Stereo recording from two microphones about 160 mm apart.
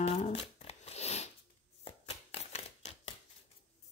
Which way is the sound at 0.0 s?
40° left (ahead or behind).